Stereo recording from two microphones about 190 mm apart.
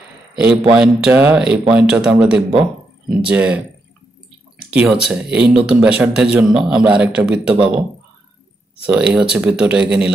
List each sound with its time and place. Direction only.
0.3 s a man's voice: 5° right (ahead or behind)
4.6 s a man's voice: 5° right (ahead or behind)
7.5 s speech: 25° right (ahead or behind)
8.9 s a man's voice: 5° right (ahead or behind)